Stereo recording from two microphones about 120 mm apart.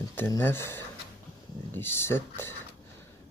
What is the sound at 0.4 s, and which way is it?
Speech, 20° left (ahead or behind).